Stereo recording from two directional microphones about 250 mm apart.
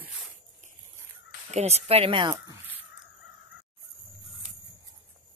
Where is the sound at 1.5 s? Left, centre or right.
Right.